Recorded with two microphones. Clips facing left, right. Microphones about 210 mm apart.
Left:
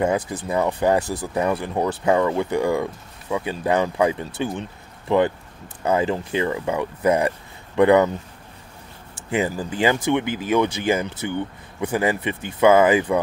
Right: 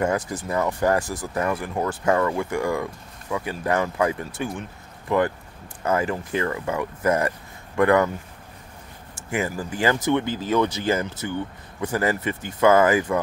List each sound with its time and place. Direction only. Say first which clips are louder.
0.3 s speech: left 2 dB; 25° left (ahead or behind)
9.3 s speech: left 3 dB; 20° left (ahead or behind)